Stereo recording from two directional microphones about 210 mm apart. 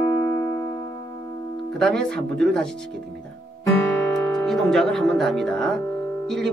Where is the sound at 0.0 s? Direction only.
15° left (ahead or behind).